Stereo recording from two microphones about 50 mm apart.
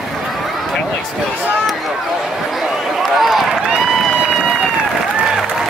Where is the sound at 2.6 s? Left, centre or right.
Centre.